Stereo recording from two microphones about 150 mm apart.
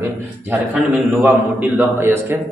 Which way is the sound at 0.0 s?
15° right (ahead or behind).